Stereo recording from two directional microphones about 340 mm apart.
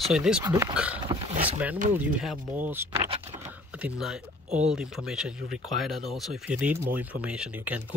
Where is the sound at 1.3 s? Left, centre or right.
Centre.